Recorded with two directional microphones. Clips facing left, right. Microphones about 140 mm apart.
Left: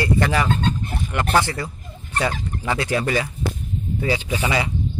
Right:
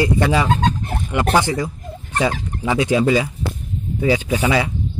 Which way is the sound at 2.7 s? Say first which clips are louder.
Right 6 dB; 15° right (ahead or behind).